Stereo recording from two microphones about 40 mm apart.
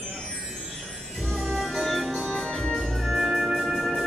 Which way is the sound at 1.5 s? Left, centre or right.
Centre.